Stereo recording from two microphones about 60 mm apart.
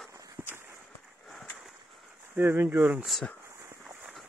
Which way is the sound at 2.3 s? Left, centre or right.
Right.